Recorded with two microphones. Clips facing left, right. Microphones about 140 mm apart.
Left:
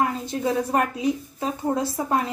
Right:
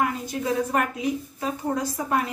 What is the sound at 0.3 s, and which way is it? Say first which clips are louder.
A woman's voice: left 2 dB; 30° left (ahead or behind).